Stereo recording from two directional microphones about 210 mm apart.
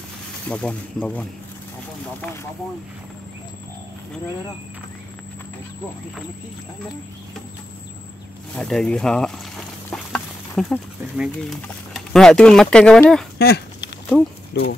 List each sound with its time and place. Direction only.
0.5 s speech: 5° left (ahead or behind)
8.5 s speech: 5° left (ahead or behind)
13.4 s speech: 50° left (ahead or behind)